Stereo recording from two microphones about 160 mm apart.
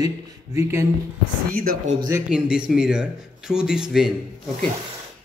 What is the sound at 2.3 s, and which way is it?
Speech, 5° right (ahead or behind).